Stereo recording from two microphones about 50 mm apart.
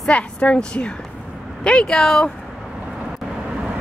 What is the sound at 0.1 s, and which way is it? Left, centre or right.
A woman's voice, left.